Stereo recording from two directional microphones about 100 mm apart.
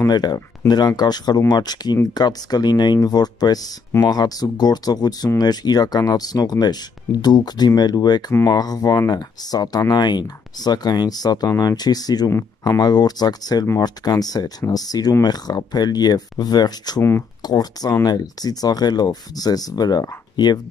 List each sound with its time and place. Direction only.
0.1 s speech: 45° left (ahead or behind)
12.3 s speech: 30° left (ahead or behind)